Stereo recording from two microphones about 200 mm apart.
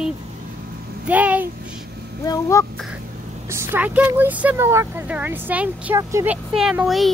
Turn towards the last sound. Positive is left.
turn(degrees=0)  # may be behind; listen again after turning